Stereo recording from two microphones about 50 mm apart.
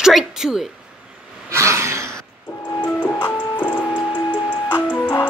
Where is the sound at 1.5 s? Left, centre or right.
Right.